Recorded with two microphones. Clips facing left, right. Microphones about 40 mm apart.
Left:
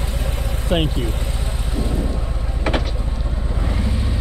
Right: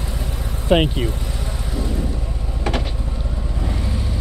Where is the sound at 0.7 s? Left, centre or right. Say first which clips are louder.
Right 4 dB; right.